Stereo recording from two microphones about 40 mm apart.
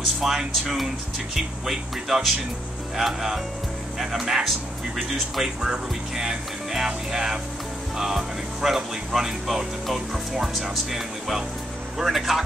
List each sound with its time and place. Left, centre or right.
0.2 s speech: centre